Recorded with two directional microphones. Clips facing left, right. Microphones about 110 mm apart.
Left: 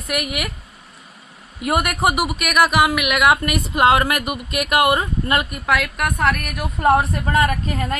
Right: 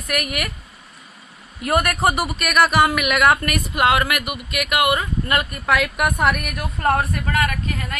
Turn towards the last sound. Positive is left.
turn(degrees=35)  # may be behind; listen again after turning